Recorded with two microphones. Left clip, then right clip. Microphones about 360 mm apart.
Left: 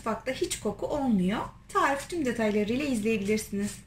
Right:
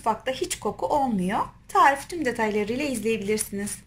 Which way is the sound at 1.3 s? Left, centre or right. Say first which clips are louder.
Right 6 dB; centre.